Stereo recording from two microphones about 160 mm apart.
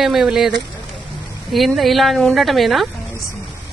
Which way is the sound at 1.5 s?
Centre (ahead or behind).